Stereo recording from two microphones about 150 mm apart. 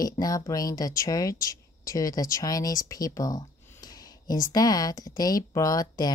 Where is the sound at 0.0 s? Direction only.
25° left (ahead or behind).